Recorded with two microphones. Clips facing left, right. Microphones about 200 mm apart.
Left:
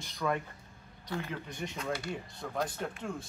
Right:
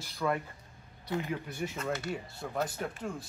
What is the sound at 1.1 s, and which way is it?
Speech, 15° right (ahead or behind).